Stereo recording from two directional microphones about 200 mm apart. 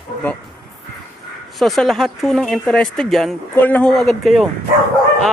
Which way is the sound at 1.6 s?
Centre (ahead or behind).